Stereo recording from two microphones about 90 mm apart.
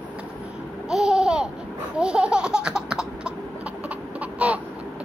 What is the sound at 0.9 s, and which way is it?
Laughter, 10° right (ahead or behind).